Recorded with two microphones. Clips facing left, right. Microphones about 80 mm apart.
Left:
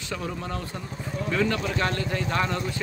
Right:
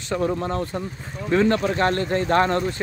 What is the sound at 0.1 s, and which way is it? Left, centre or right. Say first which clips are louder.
Speech: right 9 dB; right.